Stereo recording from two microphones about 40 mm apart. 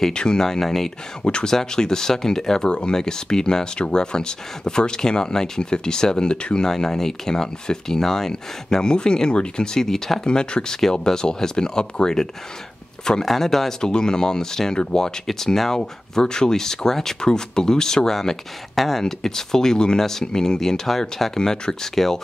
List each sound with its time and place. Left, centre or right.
0.1 s speech: centre
1.2 s speech: left
1.5 s speech: centre
9.8 s speech: centre
10.2 s speech: left
13.2 s speech: centre
15.2 s speech: centre
15.8 s speech: centre